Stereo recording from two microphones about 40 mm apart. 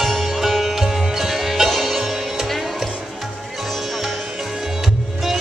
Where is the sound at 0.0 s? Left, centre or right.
Centre.